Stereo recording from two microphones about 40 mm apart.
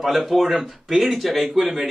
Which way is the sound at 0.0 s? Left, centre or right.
Centre.